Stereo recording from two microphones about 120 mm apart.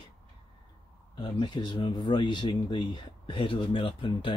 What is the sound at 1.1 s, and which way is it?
Speech, 40° left (ahead or behind).